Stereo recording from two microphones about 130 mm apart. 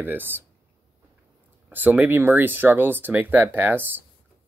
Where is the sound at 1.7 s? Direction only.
15° right (ahead or behind).